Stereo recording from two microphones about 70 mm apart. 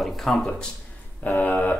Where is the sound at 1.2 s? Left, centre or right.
Left.